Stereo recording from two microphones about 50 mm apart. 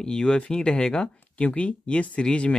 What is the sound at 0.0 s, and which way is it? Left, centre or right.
Speech, centre.